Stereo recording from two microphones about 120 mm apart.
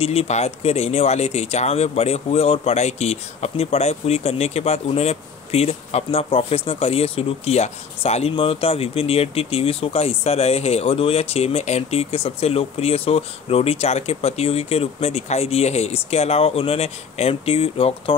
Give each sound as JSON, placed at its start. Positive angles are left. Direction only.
{"t": 0.0, "sound": "speech", "side_deg": 55}